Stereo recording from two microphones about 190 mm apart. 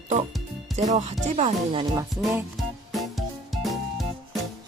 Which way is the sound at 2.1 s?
Centre (ahead or behind).